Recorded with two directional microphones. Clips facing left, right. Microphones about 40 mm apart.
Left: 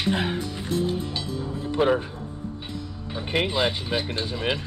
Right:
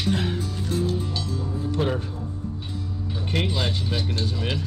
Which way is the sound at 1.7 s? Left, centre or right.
Left.